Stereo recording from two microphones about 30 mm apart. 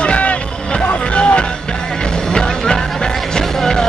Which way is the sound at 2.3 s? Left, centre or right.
Left.